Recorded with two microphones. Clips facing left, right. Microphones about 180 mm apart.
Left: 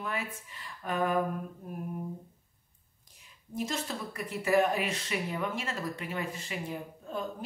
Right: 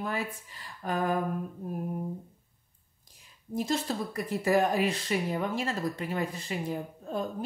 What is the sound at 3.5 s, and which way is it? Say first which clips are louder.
Speech: right 4 dB; 35° right (ahead or behind).